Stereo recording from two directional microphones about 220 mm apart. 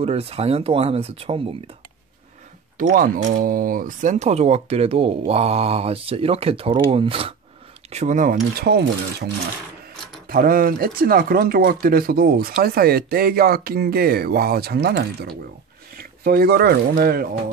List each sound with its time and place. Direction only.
0.0 s speech: 25° right (ahead or behind)
2.8 s speech: 40° right (ahead or behind)
8.5 s speech: 45° right (ahead or behind)